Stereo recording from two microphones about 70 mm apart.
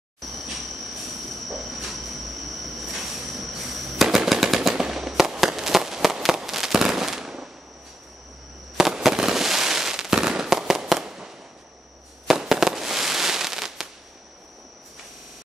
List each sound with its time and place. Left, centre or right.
1.5 s train: centre
2.6 s firecracker: centre
8.7 s fireworks: centre